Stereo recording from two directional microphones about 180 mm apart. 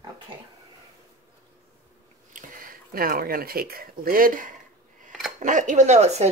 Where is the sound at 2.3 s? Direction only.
50° right (ahead or behind).